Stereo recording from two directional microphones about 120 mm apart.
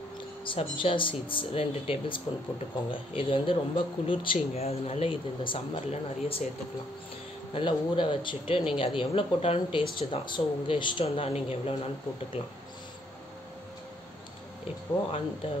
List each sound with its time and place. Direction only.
0.5 s speech: 45° left (ahead or behind)
7.5 s speech: 45° left (ahead or behind)